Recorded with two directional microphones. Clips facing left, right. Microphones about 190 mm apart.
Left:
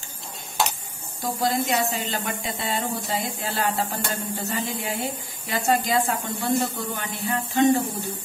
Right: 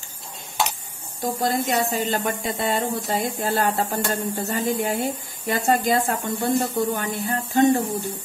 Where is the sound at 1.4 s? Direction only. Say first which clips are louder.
Even; 45° right (ahead or behind).